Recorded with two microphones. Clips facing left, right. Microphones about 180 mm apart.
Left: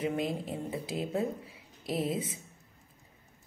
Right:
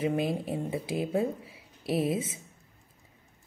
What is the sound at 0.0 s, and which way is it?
Speech, 25° right (ahead or behind).